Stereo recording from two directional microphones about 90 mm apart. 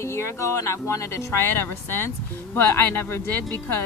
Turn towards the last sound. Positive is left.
turn(degrees=25)  # may be behind; listen again after turning